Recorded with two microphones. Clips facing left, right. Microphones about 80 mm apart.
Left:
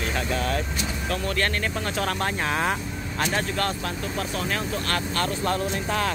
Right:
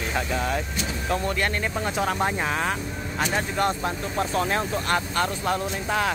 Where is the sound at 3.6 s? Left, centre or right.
Right; by 6.1 s centre.